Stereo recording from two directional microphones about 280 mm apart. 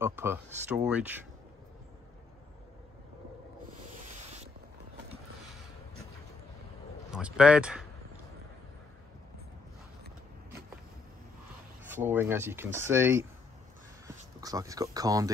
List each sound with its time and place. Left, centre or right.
0.0 s speech: centre
3.7 s sanding: right
7.1 s speech: centre
11.8 s speech: centre